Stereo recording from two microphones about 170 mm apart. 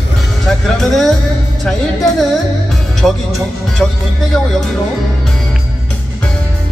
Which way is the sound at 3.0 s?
Centre (ahead or behind).